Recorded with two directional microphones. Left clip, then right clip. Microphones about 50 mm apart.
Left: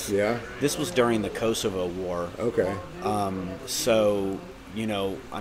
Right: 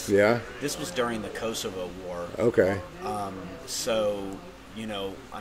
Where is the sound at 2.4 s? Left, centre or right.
Right.